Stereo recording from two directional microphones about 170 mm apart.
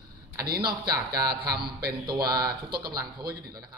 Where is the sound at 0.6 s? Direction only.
25° right (ahead or behind).